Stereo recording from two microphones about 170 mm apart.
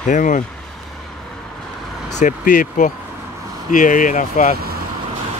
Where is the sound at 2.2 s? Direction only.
50° left (ahead or behind).